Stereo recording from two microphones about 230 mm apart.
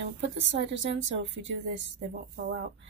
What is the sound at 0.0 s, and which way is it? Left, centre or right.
A woman's voice, right.